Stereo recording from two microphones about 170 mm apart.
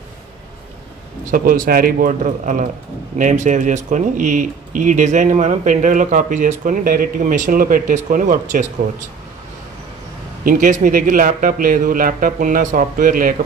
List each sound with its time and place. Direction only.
1.3 s a man's voice: 55° right (ahead or behind)
10.4 s speech: 50° right (ahead or behind)